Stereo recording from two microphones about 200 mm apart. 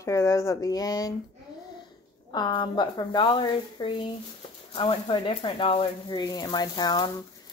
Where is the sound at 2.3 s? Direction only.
20° left (ahead or behind).